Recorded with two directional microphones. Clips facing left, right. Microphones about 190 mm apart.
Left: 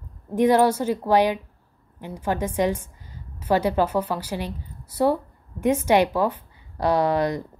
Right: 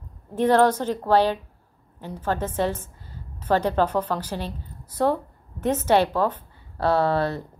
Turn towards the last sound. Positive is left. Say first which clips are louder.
# left 1 dB
turn(degrees=15)  # may be behind; listen again after turning